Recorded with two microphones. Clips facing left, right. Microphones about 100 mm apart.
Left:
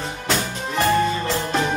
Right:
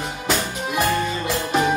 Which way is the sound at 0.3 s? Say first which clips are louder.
Right 1 dB; 5° right (ahead or behind).